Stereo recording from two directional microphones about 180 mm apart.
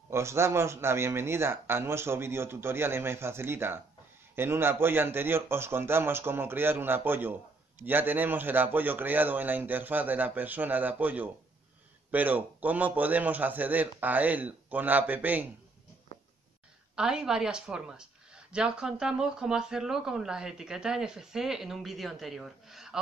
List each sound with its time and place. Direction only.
0.1 s a man's voice: 15° right (ahead or behind)
16.1 s a sound: 40° left (ahead or behind)
16.9 s a woman's voice: 5° right (ahead or behind)